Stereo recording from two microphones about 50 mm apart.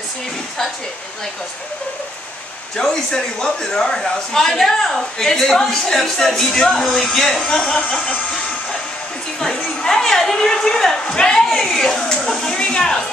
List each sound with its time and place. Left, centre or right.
2.8 s a man's voice: centre
9.4 s a man's voice: centre